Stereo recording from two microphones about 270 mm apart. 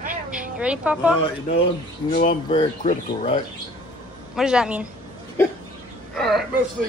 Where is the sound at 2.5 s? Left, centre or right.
Centre.